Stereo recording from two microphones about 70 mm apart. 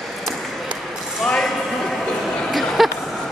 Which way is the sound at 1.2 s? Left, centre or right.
Centre.